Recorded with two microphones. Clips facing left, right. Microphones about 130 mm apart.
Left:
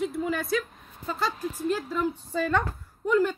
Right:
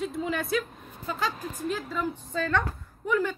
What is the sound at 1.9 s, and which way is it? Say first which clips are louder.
Speech: left 3 dB; 10° left (ahead or behind).